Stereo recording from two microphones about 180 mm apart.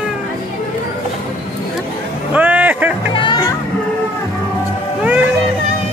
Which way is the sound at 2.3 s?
10° right (ahead or behind).